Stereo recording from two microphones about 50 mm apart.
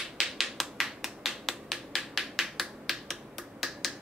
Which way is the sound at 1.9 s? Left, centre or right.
Centre.